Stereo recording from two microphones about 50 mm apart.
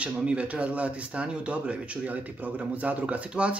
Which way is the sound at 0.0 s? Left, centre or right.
Right.